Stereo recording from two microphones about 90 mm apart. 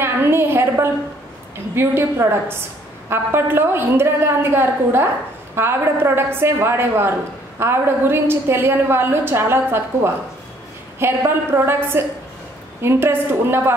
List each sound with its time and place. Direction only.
0.0 s a woman's voice: 25° right (ahead or behind)